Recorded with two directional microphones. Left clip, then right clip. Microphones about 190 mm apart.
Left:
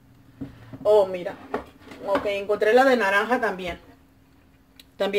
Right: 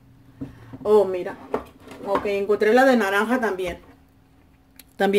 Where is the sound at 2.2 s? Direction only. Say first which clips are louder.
Right 3 dB; 45° right (ahead or behind).